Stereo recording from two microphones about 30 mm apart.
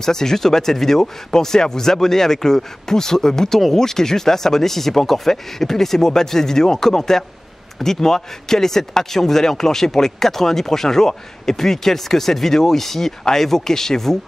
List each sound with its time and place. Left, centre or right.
0.0 s speech: centre